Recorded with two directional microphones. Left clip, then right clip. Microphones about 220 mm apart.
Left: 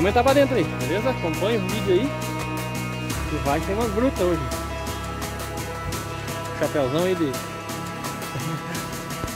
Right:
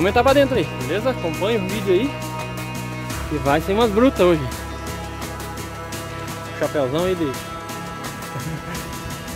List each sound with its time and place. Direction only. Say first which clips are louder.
0.0 s speech: right 3 dB; 10° right (ahead or behind)
3.4 s speech: right 6 dB; 45° right (ahead or behind)
6.6 s speech: right 2 dB; centre (ahead or behind)